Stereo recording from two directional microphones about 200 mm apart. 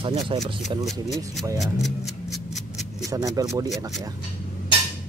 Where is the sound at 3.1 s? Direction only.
20° right (ahead or behind).